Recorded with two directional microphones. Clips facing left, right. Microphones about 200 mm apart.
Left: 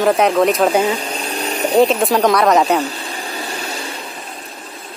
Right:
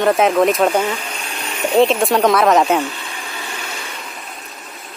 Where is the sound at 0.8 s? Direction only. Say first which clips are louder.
Left 4 dB; 35° left (ahead or behind).